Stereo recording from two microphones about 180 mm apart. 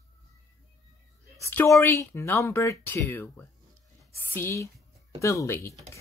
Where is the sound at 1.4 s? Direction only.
15° left (ahead or behind).